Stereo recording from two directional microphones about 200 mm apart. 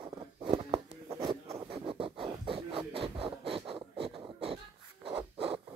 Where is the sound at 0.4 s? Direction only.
30° right (ahead or behind).